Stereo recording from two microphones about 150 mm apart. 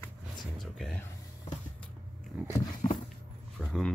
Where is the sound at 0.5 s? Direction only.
Centre (ahead or behind).